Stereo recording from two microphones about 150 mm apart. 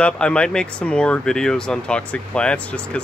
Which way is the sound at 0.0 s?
5° left (ahead or behind).